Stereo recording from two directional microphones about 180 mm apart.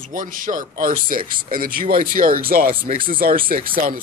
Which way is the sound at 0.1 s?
50° right (ahead or behind).